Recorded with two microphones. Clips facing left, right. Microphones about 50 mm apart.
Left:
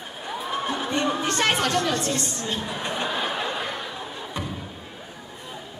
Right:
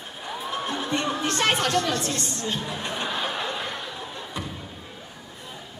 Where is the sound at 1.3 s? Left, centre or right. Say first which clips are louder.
Right 2 dB; centre.